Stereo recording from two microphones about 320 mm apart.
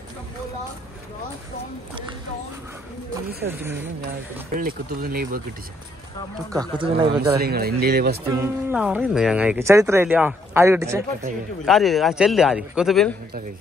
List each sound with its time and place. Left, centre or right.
3.4 s speech: centre
4.6 s speech: right
6.5 s speech: centre
7.3 s speech: right
8.4 s a man's voice: centre